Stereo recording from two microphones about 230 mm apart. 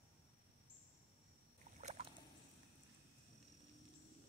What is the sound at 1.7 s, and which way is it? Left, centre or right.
Boat, right.